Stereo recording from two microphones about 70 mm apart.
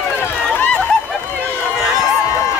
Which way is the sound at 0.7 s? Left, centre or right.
Centre.